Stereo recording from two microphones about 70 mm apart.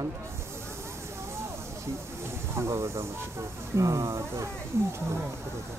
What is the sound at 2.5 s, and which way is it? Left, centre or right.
Speech, right.